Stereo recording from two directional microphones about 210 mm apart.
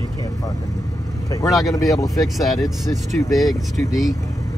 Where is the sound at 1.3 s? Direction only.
15° left (ahead or behind).